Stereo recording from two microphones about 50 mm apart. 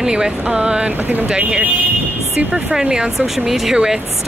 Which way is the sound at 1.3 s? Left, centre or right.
Right.